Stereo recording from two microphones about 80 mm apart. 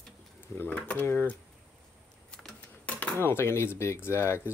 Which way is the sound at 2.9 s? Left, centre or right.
Centre.